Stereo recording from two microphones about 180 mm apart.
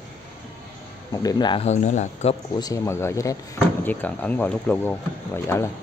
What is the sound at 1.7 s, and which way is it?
Speech, 40° left (ahead or behind).